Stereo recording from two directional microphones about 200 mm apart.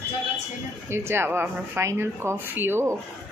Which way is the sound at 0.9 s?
10° right (ahead or behind).